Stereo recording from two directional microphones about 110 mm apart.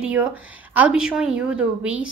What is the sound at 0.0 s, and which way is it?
A woman's voice, 10° right (ahead or behind).